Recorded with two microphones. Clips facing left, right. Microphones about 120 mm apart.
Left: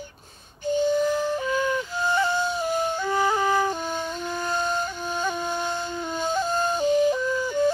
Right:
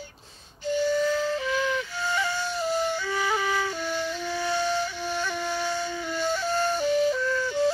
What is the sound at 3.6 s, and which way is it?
Music, 45° left (ahead or behind).